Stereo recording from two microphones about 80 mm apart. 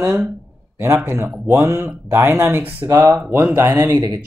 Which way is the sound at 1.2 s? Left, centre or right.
Right.